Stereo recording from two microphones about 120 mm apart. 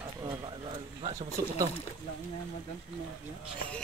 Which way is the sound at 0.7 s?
55° right (ahead or behind).